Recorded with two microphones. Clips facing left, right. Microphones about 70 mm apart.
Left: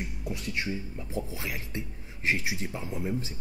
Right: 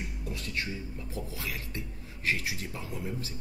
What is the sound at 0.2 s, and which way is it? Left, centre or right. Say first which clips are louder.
Speech: left 2 dB; centre.